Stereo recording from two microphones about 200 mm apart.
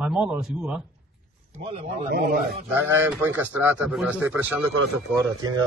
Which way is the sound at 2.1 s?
50° right (ahead or behind).